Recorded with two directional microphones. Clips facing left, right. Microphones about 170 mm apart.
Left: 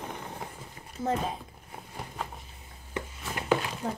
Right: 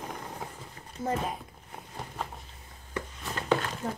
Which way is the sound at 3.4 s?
10° left (ahead or behind).